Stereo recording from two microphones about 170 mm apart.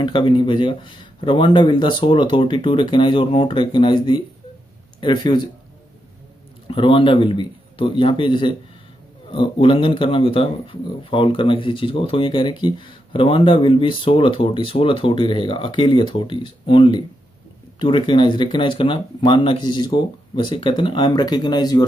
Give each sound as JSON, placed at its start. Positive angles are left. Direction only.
{"t": 0.0, "sound": "speech", "side_deg": 25}
{"t": 6.7, "sound": "speech", "side_deg": 30}